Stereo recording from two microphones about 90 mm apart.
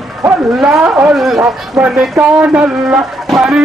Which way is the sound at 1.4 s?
20° right (ahead or behind).